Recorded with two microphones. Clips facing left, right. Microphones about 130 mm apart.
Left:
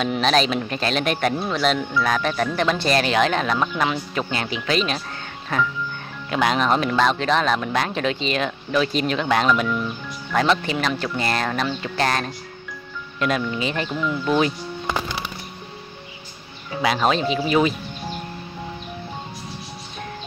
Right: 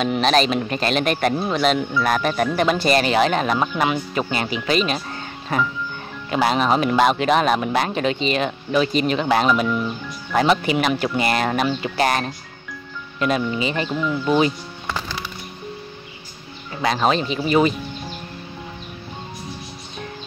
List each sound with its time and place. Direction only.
0.0 s speech: centre (ahead or behind)
6.3 s speech: 5° right (ahead or behind)
14.9 s music: 20° left (ahead or behind)
16.7 s speech: centre (ahead or behind)